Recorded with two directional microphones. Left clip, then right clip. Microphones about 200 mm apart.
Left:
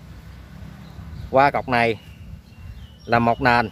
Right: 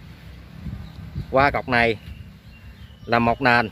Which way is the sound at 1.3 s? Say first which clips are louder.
Left 1 dB; centre (ahead or behind).